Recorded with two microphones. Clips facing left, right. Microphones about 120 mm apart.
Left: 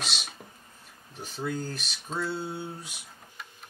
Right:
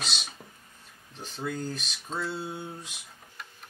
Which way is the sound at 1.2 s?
5° left (ahead or behind).